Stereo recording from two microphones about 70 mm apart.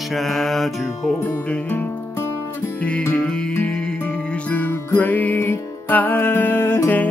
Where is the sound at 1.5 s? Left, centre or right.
Left.